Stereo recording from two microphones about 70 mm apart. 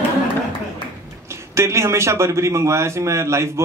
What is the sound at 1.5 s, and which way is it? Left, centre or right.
A man's voice, right.